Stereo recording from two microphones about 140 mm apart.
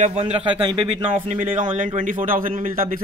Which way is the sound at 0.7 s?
30° right (ahead or behind).